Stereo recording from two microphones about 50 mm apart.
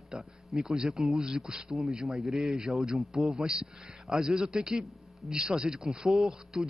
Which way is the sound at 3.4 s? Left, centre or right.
Centre.